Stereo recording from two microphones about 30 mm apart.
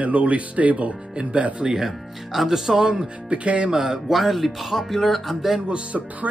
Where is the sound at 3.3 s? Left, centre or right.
Right.